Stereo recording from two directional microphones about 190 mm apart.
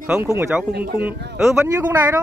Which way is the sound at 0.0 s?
10° right (ahead or behind).